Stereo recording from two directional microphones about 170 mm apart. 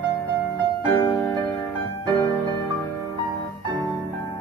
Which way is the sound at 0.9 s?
20° left (ahead or behind).